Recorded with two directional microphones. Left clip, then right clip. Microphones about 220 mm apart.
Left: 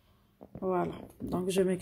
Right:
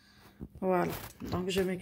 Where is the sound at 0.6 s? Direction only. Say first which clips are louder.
Right 2 dB; centre (ahead or behind).